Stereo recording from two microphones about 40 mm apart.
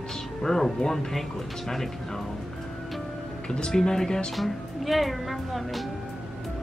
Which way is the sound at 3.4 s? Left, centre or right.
Centre.